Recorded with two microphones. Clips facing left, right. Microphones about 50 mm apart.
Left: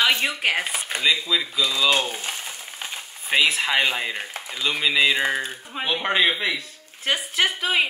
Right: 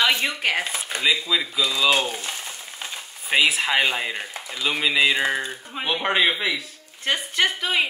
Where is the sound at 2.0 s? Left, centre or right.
Centre.